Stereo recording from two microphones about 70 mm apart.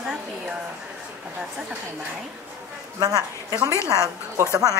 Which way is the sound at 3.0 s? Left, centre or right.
Right.